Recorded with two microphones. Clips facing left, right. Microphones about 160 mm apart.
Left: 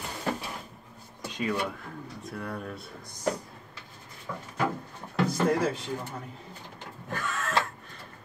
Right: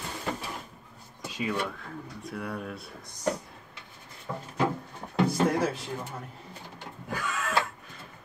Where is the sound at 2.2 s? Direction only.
Centre (ahead or behind).